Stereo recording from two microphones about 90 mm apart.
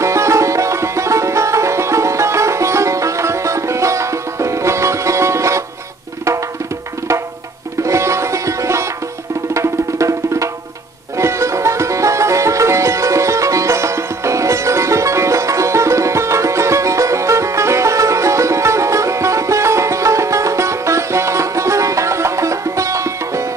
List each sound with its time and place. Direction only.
0.0 s music: 35° right (ahead or behind)
7.8 s music: 35° right (ahead or behind)